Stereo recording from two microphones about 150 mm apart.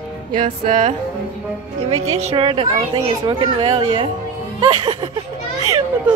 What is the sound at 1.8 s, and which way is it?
A woman's voice, 45° right (ahead or behind).